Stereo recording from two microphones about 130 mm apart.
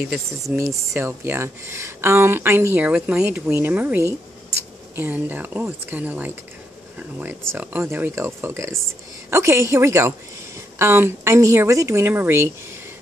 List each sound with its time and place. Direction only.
0.5 s speech: 20° right (ahead or behind)